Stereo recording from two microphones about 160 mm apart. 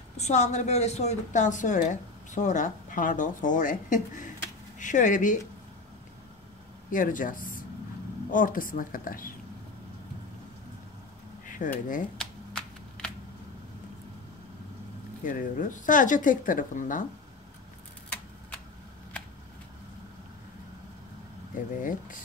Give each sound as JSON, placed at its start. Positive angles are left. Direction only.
{"t": 0.2, "sound": "a woman's voice", "side_deg": 45}
{"t": 6.9, "sound": "speech", "side_deg": 55}
{"t": 11.5, "sound": "speech", "side_deg": 55}
{"t": 12.2, "sound": "shuffling cards", "side_deg": 5}
{"t": 15.2, "sound": "speech", "side_deg": 55}